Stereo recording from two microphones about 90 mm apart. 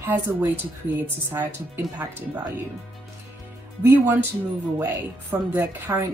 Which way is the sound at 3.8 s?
25° right (ahead or behind).